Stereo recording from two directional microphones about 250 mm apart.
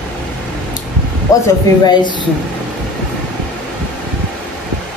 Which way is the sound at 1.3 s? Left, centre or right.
Centre.